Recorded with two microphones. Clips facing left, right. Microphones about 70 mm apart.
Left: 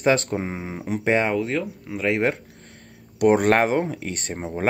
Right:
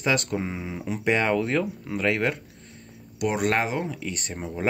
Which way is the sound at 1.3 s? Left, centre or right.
Centre.